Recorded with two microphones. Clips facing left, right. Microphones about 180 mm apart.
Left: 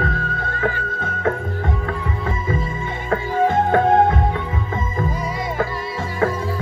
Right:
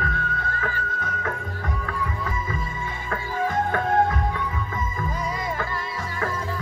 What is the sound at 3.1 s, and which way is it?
Music, 25° left (ahead or behind).